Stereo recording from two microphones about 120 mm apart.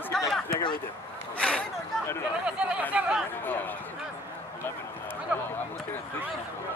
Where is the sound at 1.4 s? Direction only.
5° left (ahead or behind).